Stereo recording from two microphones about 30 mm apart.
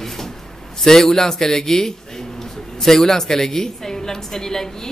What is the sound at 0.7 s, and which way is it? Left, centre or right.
A woman's voice, centre.